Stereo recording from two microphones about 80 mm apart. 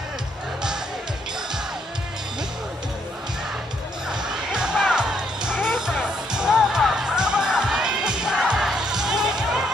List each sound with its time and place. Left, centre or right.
4.1 s music: centre